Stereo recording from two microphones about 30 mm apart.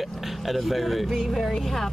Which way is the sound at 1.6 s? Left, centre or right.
Centre.